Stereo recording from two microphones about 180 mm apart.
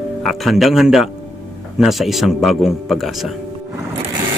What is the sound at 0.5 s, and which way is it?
Speech, centre (ahead or behind).